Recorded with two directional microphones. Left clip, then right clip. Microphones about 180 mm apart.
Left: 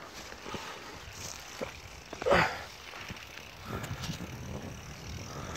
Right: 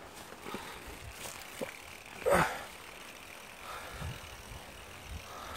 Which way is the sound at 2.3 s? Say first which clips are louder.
Left 2 dB; 10° right (ahead or behind).